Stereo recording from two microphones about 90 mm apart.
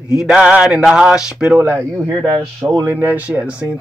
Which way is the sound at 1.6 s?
25° right (ahead or behind).